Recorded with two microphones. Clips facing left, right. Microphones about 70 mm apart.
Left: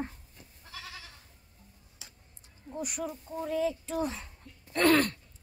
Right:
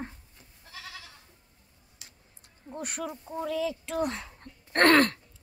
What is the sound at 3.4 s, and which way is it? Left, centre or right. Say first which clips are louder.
Speech: even; right.